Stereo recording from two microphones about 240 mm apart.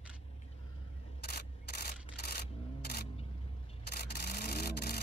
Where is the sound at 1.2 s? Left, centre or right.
Left.